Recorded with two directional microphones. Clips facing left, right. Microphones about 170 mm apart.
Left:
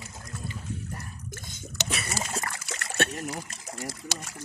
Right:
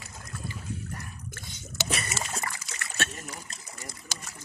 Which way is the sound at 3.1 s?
85° left.